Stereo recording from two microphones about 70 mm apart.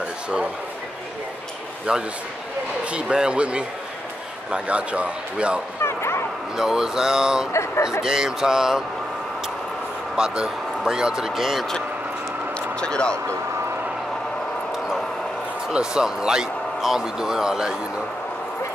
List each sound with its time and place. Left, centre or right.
1.9 s speech: centre
5.8 s bow-wow: left
6.5 s speech: centre
7.5 s speech: left
8.0 s speech: centre
10.1 s speech: centre
12.8 s speech: centre
14.7 s a sound: centre
15.7 s speech: centre